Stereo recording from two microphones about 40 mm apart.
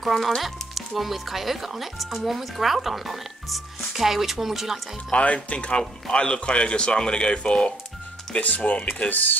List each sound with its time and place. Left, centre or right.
0.0 s speech: centre
5.1 s speech: left
9.1 s speech: left